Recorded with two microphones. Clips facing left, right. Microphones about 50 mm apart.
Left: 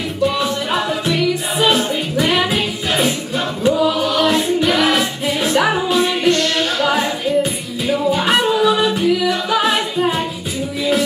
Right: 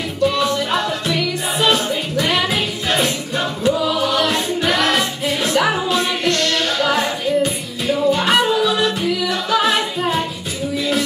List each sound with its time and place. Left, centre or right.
0.2 s music: centre